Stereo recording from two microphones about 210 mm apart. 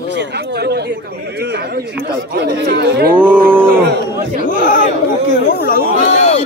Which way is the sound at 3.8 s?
55° right (ahead or behind).